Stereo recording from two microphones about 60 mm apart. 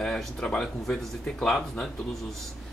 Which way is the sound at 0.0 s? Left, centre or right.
Centre.